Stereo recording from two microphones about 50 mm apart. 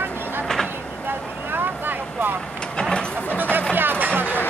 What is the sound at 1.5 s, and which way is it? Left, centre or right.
Vehicle, right.